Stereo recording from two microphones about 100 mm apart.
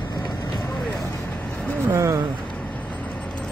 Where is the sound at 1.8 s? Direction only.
25° right (ahead or behind).